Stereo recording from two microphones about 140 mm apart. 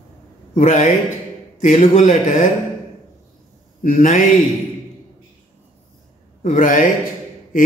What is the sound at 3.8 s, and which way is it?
Mantra, 65° left (ahead or behind).